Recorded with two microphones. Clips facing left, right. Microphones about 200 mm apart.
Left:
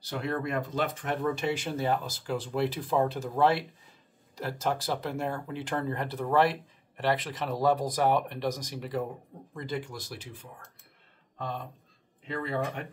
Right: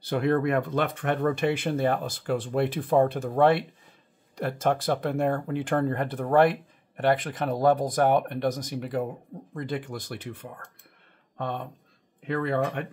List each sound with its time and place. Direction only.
0.0 s speech: 60° right (ahead or behind)